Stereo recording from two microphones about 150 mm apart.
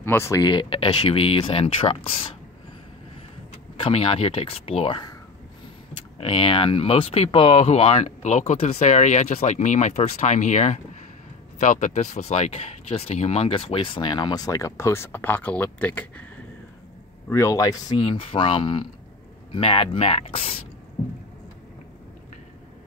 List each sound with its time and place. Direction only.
0.0 s speech: 15° left (ahead or behind); by 2.2 s 40° left (ahead or behind)
3.7 s speech: 40° left (ahead or behind)
6.1 s speech: 35° left (ahead or behind); by 16.3 s 10° left (ahead or behind)
17.3 s speech: 20° left (ahead or behind); by 20.5 s 40° left (ahead or behind)